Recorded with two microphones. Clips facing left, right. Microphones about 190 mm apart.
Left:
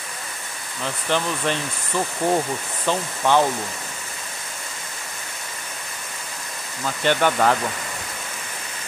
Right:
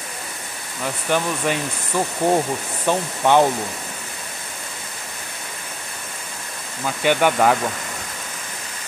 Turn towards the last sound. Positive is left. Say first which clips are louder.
# right 2 dB
turn(degrees=-10)  # may be behind; listen again after turning